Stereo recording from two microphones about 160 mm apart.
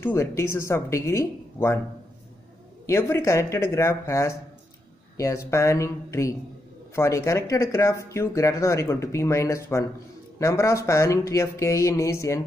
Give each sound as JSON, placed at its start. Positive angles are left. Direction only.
{"t": 0.0, "sound": "speech", "side_deg": 20}
{"t": 2.9, "sound": "speech", "side_deg": 15}